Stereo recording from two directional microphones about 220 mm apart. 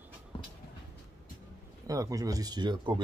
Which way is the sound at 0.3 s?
25° left (ahead or behind).